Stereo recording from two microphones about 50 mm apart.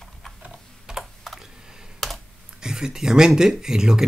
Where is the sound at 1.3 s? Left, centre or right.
Centre.